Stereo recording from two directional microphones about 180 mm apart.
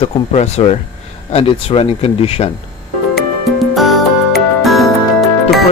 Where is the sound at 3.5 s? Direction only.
Centre (ahead or behind).